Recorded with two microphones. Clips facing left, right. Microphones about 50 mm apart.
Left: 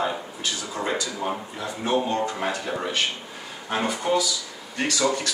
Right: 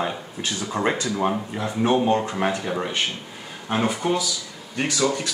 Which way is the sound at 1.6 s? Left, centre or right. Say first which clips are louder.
Right 3 dB; right.